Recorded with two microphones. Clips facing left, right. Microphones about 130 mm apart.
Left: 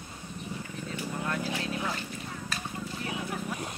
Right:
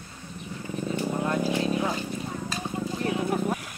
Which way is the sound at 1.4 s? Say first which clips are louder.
Right 7 dB; 20° right (ahead or behind).